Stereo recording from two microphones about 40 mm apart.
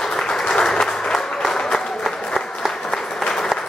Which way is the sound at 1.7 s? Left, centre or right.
Centre.